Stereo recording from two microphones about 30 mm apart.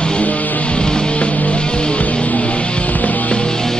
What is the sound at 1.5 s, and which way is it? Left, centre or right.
Music, left.